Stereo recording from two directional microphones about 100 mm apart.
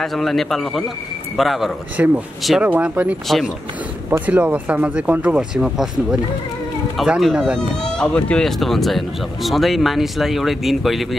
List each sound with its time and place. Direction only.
0.0 s speech: 5° left (ahead or behind)
2.0 s speech: 20° right (ahead or behind)
3.3 s speech: centre (ahead or behind)
4.3 s speech: 15° right (ahead or behind)
7.9 s speech: 10° left (ahead or behind)